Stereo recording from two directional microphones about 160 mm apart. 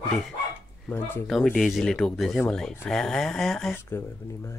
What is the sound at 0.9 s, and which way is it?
Speech, 15° left (ahead or behind).